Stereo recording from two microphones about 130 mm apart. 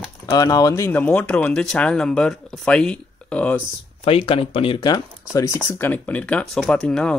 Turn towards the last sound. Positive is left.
turn(degrees=5)  # may be behind; listen again after turning